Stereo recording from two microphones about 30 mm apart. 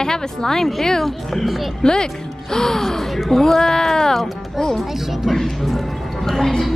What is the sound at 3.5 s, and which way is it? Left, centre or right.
Speech, centre.